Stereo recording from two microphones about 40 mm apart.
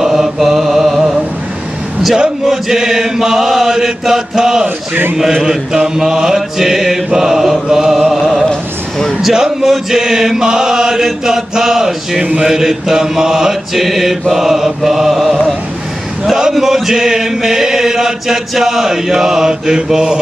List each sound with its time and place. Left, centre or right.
0.0 s mantra: centre
2.4 s chant: centre
5.1 s mantra: centre
9.3 s chant: centre
14.8 s mantra: centre
16.6 s chant: centre